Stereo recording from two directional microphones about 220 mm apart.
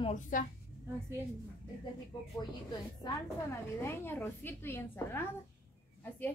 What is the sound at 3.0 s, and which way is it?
A woman's voice, 15° left (ahead or behind).